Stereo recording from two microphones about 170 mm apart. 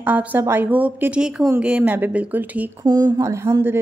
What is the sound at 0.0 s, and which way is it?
A woman's voice, 10° right (ahead or behind).